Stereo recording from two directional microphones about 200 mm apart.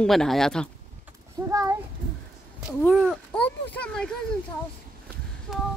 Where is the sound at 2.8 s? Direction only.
Centre (ahead or behind).